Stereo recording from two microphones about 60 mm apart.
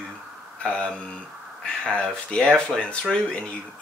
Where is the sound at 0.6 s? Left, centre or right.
Centre.